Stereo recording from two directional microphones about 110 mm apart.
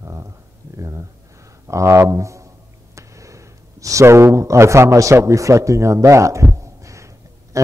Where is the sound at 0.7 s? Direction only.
30° right (ahead or behind).